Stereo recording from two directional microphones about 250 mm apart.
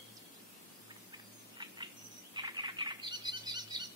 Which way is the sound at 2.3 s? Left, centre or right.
Centre.